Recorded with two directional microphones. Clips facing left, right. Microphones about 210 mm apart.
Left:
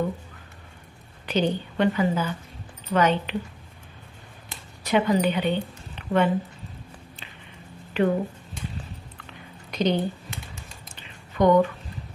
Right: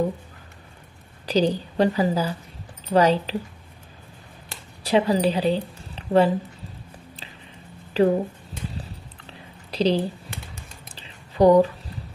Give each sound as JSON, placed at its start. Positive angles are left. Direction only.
{"t": 1.2, "sound": "a woman's voice", "side_deg": -35}
{"t": 4.8, "sound": "a woman's voice", "side_deg": -35}
{"t": 8.0, "sound": "a woman's voice", "side_deg": -35}
{"t": 8.7, "sound": "a sound", "side_deg": -35}